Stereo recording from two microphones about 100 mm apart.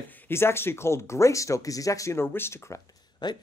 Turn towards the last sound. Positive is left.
turn(degrees=50)  # may be behind; listen again after turning